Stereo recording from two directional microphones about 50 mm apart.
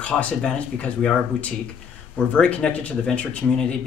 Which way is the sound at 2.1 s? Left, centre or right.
Centre.